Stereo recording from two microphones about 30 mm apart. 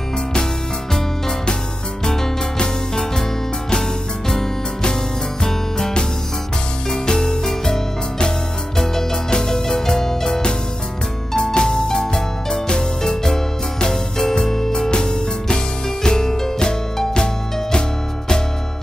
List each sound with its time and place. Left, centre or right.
6.9 s music: left